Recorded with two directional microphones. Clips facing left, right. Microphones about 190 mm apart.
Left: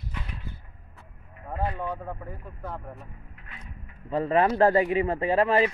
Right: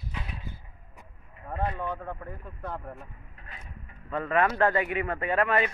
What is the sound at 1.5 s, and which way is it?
Speech, 5° left (ahead or behind).